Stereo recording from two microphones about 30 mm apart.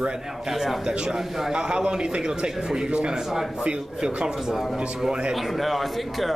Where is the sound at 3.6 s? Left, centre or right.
Right.